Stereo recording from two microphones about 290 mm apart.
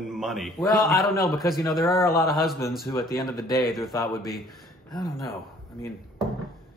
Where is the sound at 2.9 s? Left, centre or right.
Centre.